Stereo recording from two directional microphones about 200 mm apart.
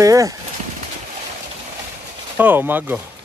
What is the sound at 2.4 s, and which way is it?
Speech, 10° right (ahead or behind).